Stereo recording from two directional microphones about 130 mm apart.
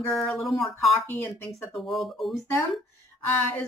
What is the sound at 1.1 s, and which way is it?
Speech, 20° left (ahead or behind).